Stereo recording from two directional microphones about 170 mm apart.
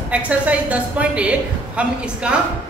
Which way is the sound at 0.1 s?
10° right (ahead or behind).